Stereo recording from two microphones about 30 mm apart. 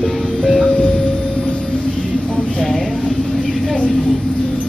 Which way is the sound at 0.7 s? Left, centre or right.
Left.